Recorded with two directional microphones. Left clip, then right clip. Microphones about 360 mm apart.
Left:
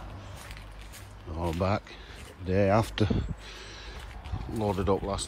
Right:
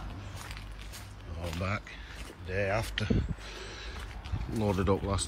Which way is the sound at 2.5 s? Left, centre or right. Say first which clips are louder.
Left 6 dB; centre.